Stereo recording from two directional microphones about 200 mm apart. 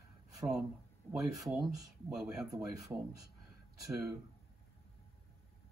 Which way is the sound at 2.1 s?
Centre (ahead or behind).